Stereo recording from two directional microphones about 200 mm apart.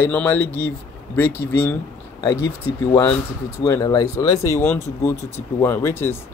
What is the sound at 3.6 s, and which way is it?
Speech, 15° left (ahead or behind).